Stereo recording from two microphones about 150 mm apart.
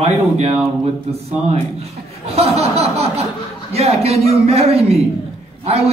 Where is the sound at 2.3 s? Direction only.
40° right (ahead or behind).